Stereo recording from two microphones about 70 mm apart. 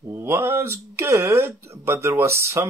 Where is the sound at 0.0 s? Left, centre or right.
Right.